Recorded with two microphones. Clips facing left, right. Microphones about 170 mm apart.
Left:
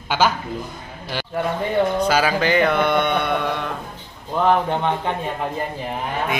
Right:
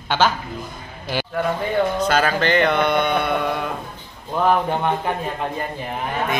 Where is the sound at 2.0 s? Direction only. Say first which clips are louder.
Left 1 dB; 10° left (ahead or behind).